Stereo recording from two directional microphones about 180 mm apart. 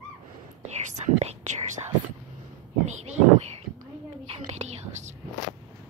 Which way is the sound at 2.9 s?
40° right (ahead or behind).